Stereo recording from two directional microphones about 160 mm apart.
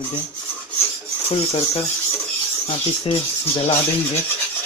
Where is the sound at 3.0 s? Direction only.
40° left (ahead or behind).